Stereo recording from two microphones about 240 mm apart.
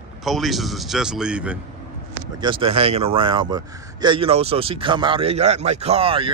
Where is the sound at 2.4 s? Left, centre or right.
Right.